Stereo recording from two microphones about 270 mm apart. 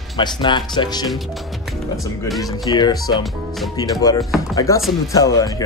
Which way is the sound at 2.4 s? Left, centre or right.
Centre.